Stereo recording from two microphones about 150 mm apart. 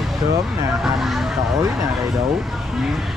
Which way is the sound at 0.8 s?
Centre (ahead or behind).